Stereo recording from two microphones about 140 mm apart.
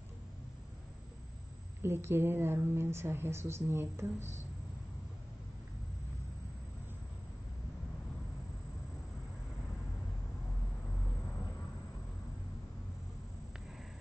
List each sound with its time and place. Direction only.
1.8 s a woman's voice: 20° right (ahead or behind)